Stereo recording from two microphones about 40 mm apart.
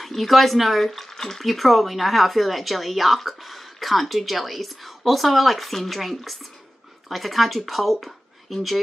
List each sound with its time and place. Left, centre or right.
0.0 s speech: centre